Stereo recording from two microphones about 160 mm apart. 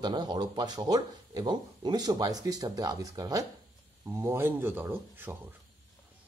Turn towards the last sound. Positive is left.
turn(degrees=-15)  # may be behind; listen again after turning